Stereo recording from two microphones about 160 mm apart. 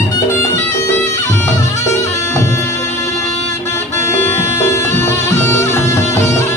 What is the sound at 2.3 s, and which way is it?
Music, 15° left (ahead or behind).